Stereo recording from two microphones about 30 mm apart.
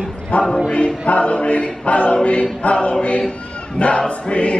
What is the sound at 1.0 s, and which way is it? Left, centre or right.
Choir, left.